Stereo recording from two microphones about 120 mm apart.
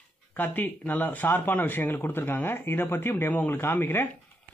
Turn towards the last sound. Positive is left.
turn(degrees=20)  # may be behind; listen again after turning